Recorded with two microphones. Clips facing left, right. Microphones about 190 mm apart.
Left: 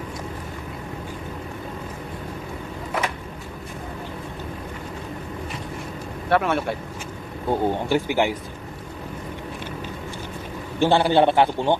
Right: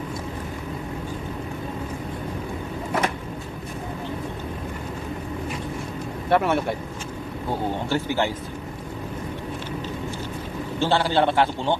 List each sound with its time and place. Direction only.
6.3 s speech: 15° right (ahead or behind)
7.4 s a man's voice: 15° left (ahead or behind)
10.8 s a man's voice: 15° left (ahead or behind)